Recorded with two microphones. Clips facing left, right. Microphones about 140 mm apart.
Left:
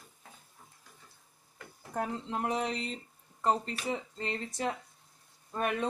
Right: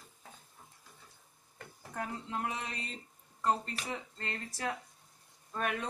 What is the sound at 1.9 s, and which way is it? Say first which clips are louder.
Speech: left 4 dB; 40° left (ahead or behind).